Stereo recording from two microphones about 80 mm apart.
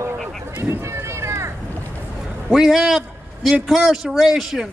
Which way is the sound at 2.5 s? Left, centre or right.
Centre.